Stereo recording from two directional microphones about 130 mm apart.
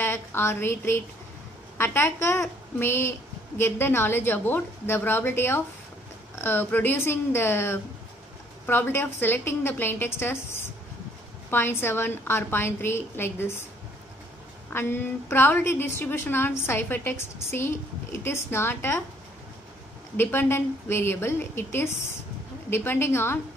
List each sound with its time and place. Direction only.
0.0 s a woman's voice: 20° left (ahead or behind)
14.7 s a woman's voice: 20° left (ahead or behind)
20.2 s a woman's voice: 15° left (ahead or behind)